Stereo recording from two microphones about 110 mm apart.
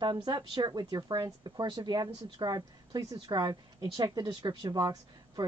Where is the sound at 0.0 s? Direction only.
45° right (ahead or behind).